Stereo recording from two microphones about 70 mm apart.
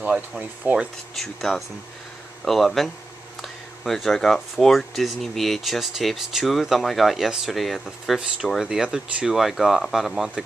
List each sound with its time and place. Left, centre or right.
0.4 s speech: right
1.1 s speech: centre